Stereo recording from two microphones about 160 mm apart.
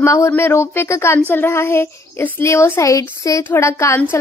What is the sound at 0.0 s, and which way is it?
A woman's voice, 15° left (ahead or behind).